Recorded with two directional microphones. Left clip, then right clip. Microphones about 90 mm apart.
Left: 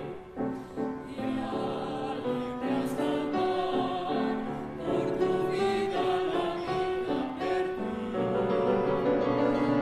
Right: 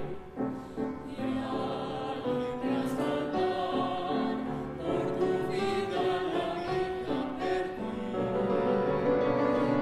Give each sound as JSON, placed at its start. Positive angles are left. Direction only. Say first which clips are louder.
{"t": 3.0, "sound": "music", "louder": "left 1 dB", "side_deg": 5}
{"t": 4.8, "sound": "music", "louder": "left 2 dB", "side_deg": 15}
{"t": 7.1, "sound": "music", "louder": "left 1 dB", "side_deg": -5}
{"t": 8.2, "sound": "music", "louder": "left 2 dB", "side_deg": 10}